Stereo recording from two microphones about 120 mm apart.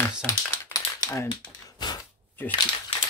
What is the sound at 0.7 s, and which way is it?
Typing, 30° left (ahead or behind).